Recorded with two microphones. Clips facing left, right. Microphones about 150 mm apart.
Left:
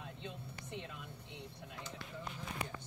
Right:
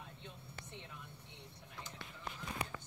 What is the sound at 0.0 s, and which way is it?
Vehicle, 90° left.